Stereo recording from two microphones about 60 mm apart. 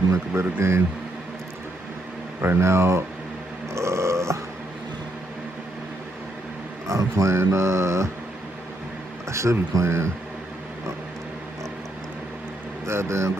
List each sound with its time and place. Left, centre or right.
0.4 s speech: right
2.4 s speech: right
3.7 s burping: right
6.9 s speech: right
9.3 s speech: right
12.8 s speech: right